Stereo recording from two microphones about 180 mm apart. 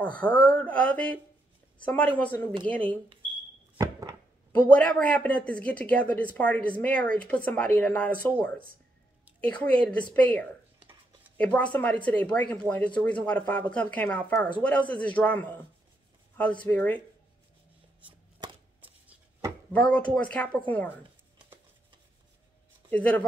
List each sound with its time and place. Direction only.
0.0 s speech: 5° left (ahead or behind)
3.7 s a sound: 20° right (ahead or behind)
4.5 s speech: 5° left (ahead or behind)
18.8 s chopping: 10° right (ahead or behind)
19.7 s speech: 5° left (ahead or behind)
22.8 s speech: 5° left (ahead or behind)